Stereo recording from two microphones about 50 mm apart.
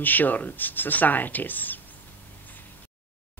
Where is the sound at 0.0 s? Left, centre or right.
Left.